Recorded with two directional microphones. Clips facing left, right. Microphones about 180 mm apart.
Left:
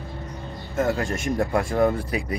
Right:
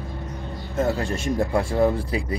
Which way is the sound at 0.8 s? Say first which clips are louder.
Even; 35° right (ahead or behind).